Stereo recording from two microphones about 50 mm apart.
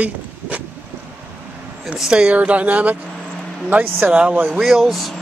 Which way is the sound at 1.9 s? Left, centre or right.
Centre.